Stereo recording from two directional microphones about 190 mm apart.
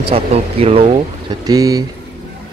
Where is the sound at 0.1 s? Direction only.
30° right (ahead or behind).